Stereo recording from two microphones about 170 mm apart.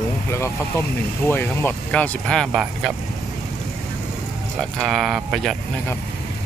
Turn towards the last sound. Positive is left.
turn(degrees=0)  # may be behind; listen again after turning